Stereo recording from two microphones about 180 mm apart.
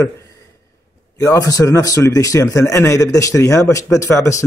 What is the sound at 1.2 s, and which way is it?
Speech, 20° left (ahead or behind).